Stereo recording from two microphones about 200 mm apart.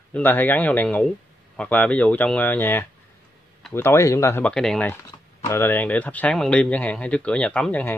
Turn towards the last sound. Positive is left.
turn(degrees=5)  # may be behind; listen again after turning